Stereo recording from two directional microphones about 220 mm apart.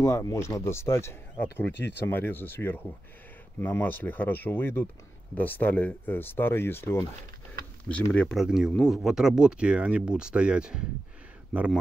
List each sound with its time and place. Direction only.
0.0 s speech: 15° left (ahead or behind)
1.7 s speech: 50° left (ahead or behind)
2.0 s speech: 10° left (ahead or behind)